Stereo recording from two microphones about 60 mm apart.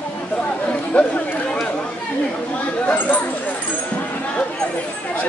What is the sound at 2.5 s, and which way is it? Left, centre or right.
Chatter, left.